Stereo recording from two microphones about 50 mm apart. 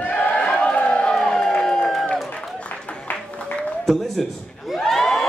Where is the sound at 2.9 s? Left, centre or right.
Left.